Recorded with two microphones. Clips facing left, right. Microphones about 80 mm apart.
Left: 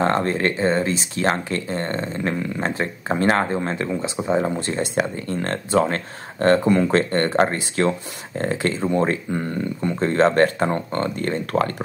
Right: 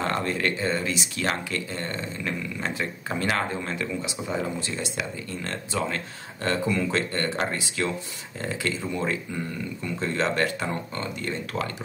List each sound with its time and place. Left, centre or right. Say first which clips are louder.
0.0 s speech: left 6 dB; left